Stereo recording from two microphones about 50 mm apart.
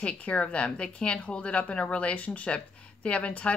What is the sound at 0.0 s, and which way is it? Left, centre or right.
Speech, left.